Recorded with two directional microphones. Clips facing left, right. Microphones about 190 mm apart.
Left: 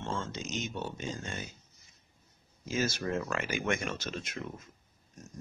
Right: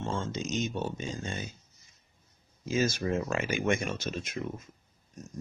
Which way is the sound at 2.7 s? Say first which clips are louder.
Right 3 dB; 20° right (ahead or behind).